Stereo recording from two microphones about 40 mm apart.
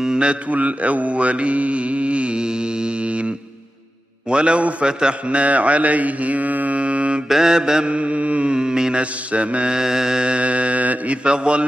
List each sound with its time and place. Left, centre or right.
0.0 s mantra: right
0.5 s mantra: right
4.3 s a man's voice: right
4.8 s mantra: right
6.8 s mantra: right
7.2 s mantra: centre
7.8 s mantra: right
9.0 s mantra: right
9.7 s mantra: centre
10.2 s mantra: right
11.2 s a man's voice: right